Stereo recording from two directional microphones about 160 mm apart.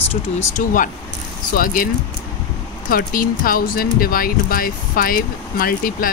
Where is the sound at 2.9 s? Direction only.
60° left (ahead or behind).